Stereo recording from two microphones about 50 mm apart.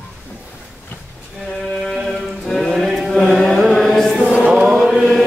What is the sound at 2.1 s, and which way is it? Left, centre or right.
Chant, centre.